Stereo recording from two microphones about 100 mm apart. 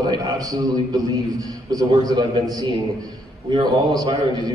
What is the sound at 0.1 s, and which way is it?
A man's voice, 40° right (ahead or behind).